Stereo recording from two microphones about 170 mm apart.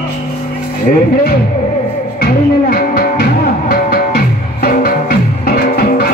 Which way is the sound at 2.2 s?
60° left (ahead or behind).